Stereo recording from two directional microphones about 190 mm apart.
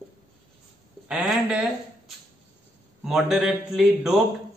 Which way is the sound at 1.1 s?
Centre (ahead or behind).